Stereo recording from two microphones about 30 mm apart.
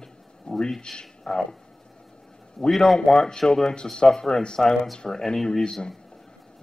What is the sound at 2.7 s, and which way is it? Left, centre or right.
Speech, centre.